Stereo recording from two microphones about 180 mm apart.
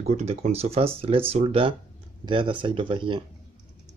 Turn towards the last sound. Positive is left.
turn(degrees=-25)  # may be behind; listen again after turning